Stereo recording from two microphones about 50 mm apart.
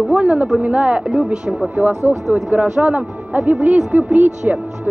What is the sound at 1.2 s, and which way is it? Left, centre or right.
Speech, centre.